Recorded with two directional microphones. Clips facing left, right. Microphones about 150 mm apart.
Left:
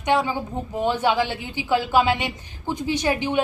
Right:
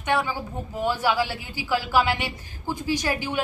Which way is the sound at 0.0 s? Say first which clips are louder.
Left 4 dB; 20° left (ahead or behind).